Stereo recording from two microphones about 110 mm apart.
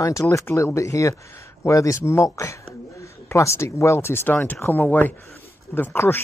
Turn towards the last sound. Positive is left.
turn(degrees=20)  # may be behind; listen again after turning